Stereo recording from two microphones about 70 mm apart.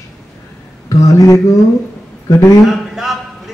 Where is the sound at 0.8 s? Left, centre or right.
Left.